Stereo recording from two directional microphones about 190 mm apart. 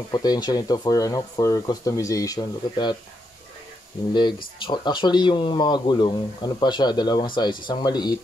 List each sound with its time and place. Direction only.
0.1 s speech: 20° left (ahead or behind)
4.1 s speech: 25° left (ahead or behind)